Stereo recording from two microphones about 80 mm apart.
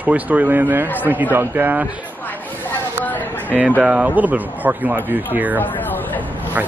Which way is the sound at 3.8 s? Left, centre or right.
Centre.